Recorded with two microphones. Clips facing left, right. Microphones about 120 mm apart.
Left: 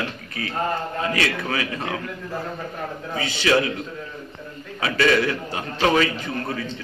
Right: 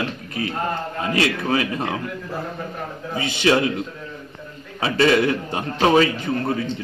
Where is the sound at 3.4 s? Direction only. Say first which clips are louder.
Right 2 dB; 25° right (ahead or behind).